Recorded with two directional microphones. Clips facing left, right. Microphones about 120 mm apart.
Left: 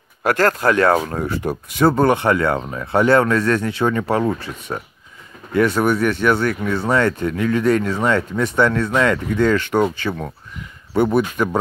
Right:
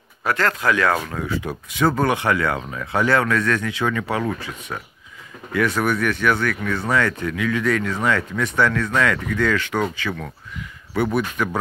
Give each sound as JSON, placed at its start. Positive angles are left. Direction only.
{"t": 0.2, "sound": "speech", "side_deg": 45}
{"t": 1.9, "sound": "speech", "side_deg": 30}